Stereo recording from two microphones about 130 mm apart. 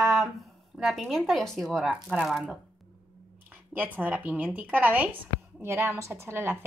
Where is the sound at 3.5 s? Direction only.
15° right (ahead or behind).